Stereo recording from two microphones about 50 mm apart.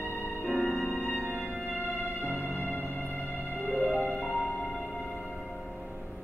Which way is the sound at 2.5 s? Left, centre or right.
Left.